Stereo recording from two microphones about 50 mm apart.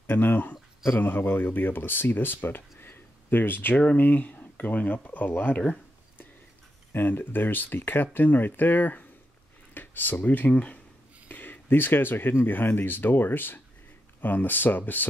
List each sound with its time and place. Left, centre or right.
0.0 s speech: left
6.9 s speech: left
11.2 s a sound: left
12.4 s speech: left